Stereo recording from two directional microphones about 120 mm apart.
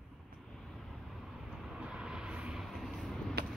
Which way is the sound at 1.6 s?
5° right (ahead or behind).